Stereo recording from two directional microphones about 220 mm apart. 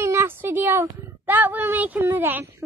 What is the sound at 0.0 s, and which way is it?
A woman's voice, 10° right (ahead or behind).